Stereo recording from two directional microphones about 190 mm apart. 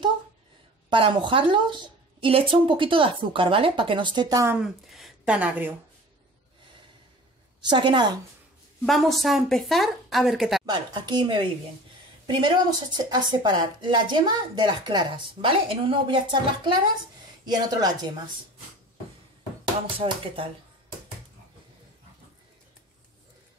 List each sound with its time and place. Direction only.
0.8 s speech: 25° right (ahead or behind)
4.6 s speech: 5° right (ahead or behind)
7.7 s speech: 25° right (ahead or behind)
8.8 s a woman's voice: centre (ahead or behind)
10.6 s speech: 20° right (ahead or behind)